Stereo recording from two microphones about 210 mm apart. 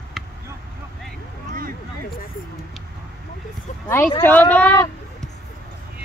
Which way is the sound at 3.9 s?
10° left (ahead or behind).